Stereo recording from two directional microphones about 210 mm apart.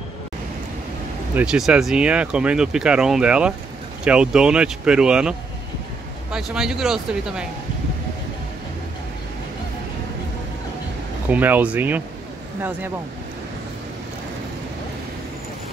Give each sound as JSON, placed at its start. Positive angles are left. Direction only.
{"t": 1.3, "sound": "speech", "side_deg": -5}
{"t": 6.3, "sound": "speech", "side_deg": -5}
{"t": 11.2, "sound": "speech", "side_deg": -10}